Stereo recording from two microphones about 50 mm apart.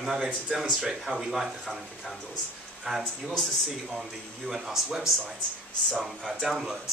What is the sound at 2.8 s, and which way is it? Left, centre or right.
Speech, centre.